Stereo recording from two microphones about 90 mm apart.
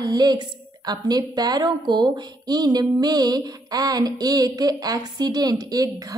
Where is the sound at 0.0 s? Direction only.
50° right (ahead or behind).